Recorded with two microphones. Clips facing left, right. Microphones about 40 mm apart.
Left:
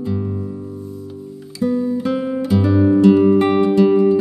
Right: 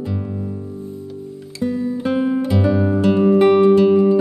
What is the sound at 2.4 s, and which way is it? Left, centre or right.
Music, centre.